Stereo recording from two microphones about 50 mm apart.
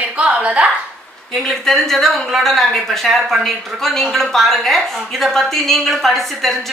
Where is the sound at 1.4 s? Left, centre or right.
Centre.